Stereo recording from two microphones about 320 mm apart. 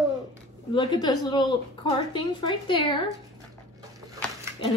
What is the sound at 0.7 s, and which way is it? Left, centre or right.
A woman's voice, centre.